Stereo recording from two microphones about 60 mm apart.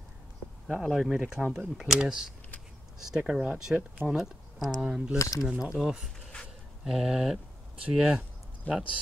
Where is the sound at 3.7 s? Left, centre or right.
Centre.